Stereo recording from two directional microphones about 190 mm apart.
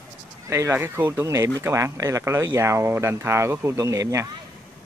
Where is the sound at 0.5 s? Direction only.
15° right (ahead or behind).